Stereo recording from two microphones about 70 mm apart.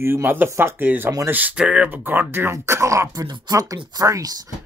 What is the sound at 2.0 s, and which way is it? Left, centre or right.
Speech, right.